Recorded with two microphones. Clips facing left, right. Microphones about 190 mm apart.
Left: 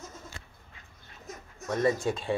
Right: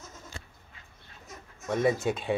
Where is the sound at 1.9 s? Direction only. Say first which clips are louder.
Right 1 dB; 20° right (ahead or behind).